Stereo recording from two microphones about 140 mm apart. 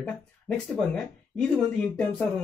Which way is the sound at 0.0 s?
5° left (ahead or behind).